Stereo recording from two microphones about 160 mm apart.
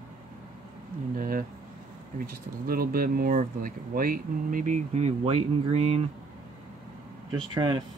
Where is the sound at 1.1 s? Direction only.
60° right (ahead or behind).